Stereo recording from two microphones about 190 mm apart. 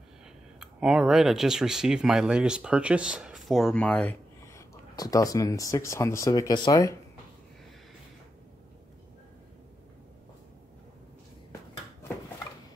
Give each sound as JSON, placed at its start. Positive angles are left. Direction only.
{"t": 0.6, "sound": "speech", "side_deg": 0}
{"t": 4.9, "sound": "speech", "side_deg": 20}